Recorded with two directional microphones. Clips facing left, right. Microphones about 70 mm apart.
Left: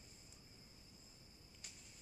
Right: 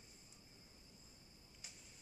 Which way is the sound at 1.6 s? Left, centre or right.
Centre.